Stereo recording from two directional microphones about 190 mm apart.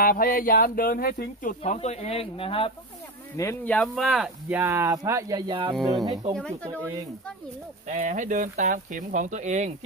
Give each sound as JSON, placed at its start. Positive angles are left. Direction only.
{"t": 0.0, "sound": "speech", "side_deg": 50}
{"t": 1.6, "sound": "speech", "side_deg": 35}
{"t": 3.3, "sound": "speech", "side_deg": 10}
{"t": 6.3, "sound": "speech", "side_deg": 5}
{"t": 7.9, "sound": "speech", "side_deg": -40}